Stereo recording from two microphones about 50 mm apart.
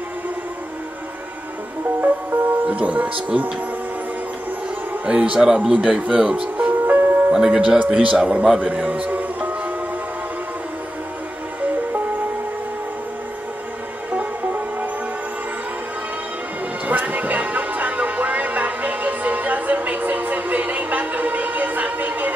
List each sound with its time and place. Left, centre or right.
2.0 s music: right
5.0 s speech: right
6.7 s music: right
7.3 s speech: centre
8.5 s music: right
16.8 s music: right